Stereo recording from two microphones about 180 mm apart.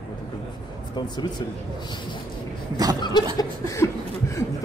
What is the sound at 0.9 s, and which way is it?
Speech, 25° left (ahead or behind).